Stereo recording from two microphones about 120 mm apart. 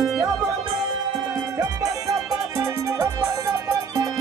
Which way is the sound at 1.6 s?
30° right (ahead or behind).